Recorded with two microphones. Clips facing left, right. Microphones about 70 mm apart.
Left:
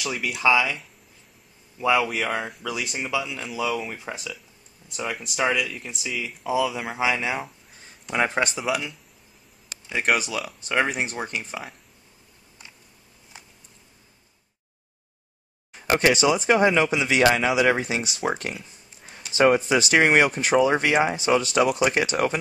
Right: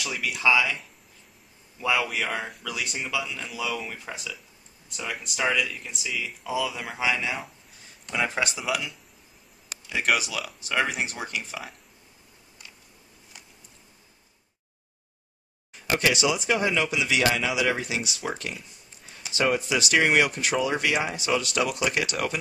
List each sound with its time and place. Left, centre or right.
0.0 s speech: centre
8.2 s a man's voice: left
8.5 s speech: centre
9.8 s a man's voice: left
15.9 s a man's voice: left
19.3 s a man's voice: left